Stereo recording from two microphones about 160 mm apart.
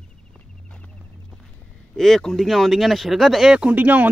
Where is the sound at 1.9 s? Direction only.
Centre (ahead or behind).